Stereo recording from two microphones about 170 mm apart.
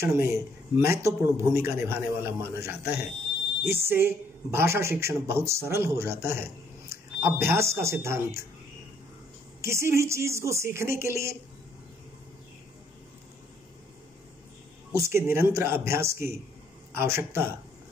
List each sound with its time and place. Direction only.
0.0 s a woman's voice: 15° right (ahead or behind)
9.6 s a woman's voice: 15° right (ahead or behind)
14.9 s a woman's voice: 15° right (ahead or behind)